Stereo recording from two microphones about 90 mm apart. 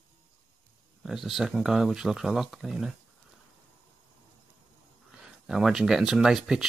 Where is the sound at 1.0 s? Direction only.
5° right (ahead or behind).